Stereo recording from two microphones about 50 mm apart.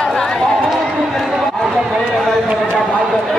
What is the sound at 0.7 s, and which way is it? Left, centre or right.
Run, centre.